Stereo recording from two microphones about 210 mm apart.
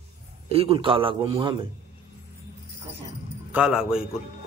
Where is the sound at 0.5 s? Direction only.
25° right (ahead or behind).